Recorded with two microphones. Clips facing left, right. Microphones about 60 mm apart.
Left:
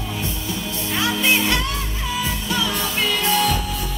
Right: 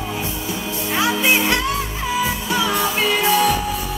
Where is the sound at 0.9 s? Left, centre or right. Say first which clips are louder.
Right 2 dB; centre.